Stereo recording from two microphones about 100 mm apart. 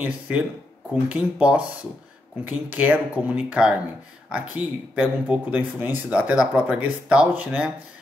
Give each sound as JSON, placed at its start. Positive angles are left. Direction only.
{"t": 0.0, "sound": "speech", "side_deg": -10}